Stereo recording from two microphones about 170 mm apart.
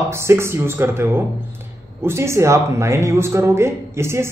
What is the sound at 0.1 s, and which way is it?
A man's voice, 15° right (ahead or behind).